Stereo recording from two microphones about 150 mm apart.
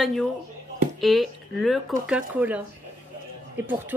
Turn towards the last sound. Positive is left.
turn(degrees=-10)  # may be behind; listen again after turning